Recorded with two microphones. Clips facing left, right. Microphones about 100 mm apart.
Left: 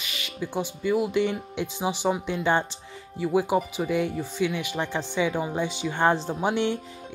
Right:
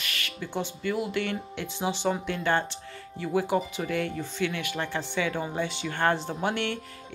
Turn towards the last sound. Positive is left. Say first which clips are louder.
# left 4 dB
turn(degrees=15)  # may be behind; listen again after turning